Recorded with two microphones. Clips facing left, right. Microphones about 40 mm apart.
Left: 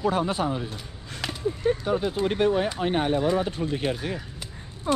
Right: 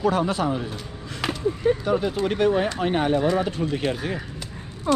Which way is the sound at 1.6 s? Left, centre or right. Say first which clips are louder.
Right 3 dB; right.